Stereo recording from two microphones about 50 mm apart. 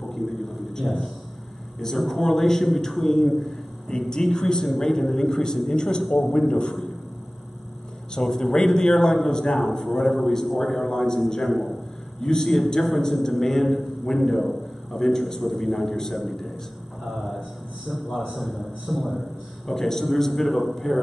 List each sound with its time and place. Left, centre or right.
0.1 s a sound: centre
1.8 s a man's voice: centre
6.3 s a man's voice: centre
8.1 s a man's voice: centre
12.2 s a man's voice: centre
17.8 s a man's voice: centre